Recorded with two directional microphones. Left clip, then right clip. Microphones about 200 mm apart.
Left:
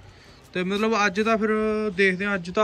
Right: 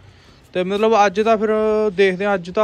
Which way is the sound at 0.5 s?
10° right (ahead or behind).